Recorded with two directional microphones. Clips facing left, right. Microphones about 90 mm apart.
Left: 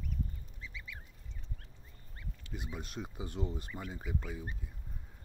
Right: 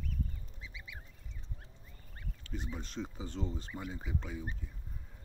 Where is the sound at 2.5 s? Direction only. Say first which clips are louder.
Right 2 dB; 5° left (ahead or behind).